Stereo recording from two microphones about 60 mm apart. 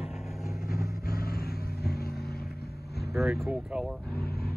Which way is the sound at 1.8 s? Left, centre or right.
Centre.